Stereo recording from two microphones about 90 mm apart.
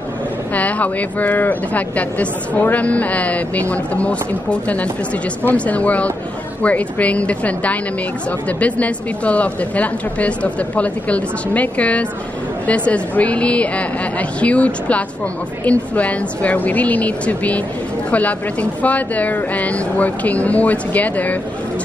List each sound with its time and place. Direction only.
0.6 s speech: 15° left (ahead or behind)